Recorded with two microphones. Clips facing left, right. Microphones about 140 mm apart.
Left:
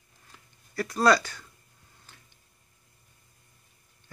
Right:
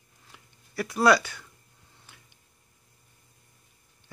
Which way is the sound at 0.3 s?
5° right (ahead or behind).